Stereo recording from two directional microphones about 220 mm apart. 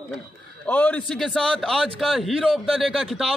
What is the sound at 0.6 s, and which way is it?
A man's voice, 10° left (ahead or behind).